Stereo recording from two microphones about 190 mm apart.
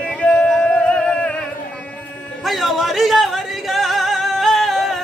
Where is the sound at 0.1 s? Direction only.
5° left (ahead or behind).